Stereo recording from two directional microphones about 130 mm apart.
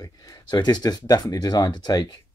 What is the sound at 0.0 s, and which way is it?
Speech, 35° left (ahead or behind).